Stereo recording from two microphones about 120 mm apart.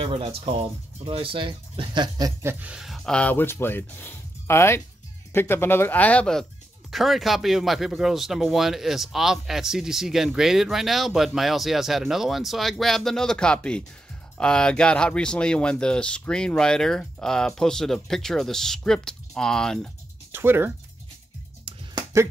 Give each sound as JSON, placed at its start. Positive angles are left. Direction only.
{"t": 0.0, "sound": "speech", "side_deg": -50}
{"t": 2.4, "sound": "speech", "side_deg": -10}
{"t": 20.3, "sound": "speech", "side_deg": -15}